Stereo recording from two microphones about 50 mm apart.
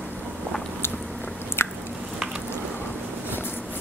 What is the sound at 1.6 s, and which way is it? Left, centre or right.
Biting, left.